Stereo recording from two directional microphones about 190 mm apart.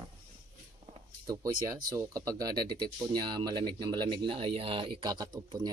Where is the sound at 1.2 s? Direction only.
20° right (ahead or behind).